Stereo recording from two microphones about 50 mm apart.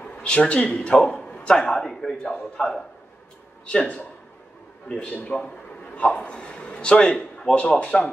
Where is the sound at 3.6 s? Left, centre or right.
Centre.